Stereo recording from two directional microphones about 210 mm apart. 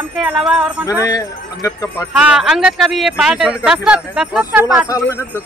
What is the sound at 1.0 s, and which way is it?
Speech, 15° left (ahead or behind).